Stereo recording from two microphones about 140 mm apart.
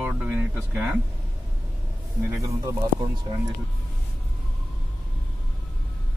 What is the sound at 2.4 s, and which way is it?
Speech, 30° right (ahead or behind).